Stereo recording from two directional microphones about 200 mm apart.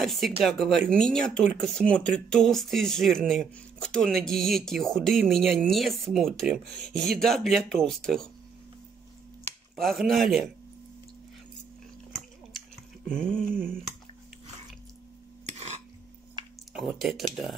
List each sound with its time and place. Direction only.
0.0 s speech: centre (ahead or behind)
9.8 s speech: centre (ahead or behind)
13.1 s speech: 5° left (ahead or behind)
15.4 s a sound: 35° right (ahead or behind)
16.4 s a sound: 20° right (ahead or behind)
16.7 s speech: centre (ahead or behind)